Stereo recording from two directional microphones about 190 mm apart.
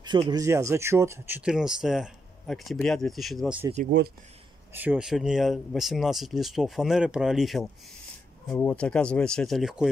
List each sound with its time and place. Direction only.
0.0 s speech: 20° right (ahead or behind); by 3.6 s centre (ahead or behind)
3.9 s speech: 65° right (ahead or behind)
4.7 s speech: 5° right (ahead or behind)